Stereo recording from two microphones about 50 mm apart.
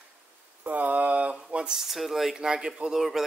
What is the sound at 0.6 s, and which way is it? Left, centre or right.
Speech, right.